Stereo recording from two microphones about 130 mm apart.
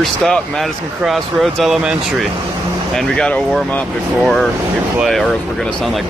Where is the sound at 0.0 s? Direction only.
Centre (ahead or behind).